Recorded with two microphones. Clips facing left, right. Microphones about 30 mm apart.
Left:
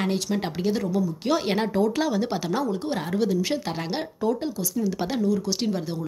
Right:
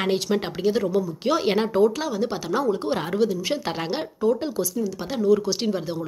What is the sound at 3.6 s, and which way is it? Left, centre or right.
Speech, centre.